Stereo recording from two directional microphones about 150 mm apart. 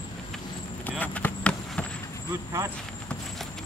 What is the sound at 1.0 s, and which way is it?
Basketball bounce, 10° left (ahead or behind).